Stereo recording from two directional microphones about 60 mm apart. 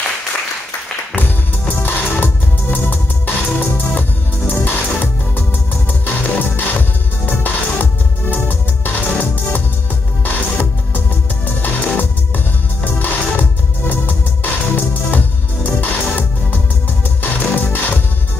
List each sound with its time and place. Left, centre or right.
1.1 s music: left